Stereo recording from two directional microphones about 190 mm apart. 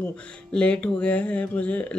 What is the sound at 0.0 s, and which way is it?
A woman's voice, 5° left (ahead or behind).